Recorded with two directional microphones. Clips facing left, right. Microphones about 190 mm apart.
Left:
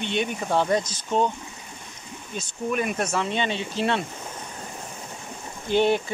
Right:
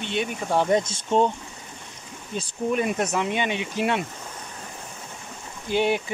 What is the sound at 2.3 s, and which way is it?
Speech, 30° right (ahead or behind).